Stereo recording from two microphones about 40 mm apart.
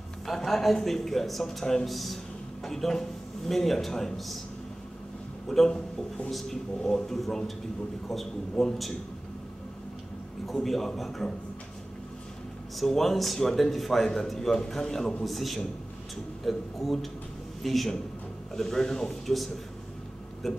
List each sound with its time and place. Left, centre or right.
0.3 s a man's voice: centre
5.7 s a man's voice: centre
10.4 s a man's voice: centre
12.7 s a man's voice: centre